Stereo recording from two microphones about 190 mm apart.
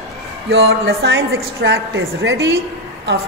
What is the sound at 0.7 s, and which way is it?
A woman's voice, 70° right (ahead or behind).